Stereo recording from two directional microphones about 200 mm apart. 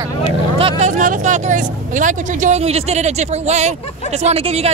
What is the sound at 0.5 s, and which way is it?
Speech, 30° right (ahead or behind).